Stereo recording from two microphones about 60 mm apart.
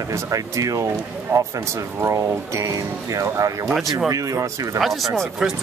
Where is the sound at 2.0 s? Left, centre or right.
Right.